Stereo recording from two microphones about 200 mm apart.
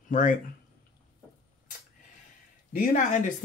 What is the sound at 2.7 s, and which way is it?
Speech, 40° left (ahead or behind).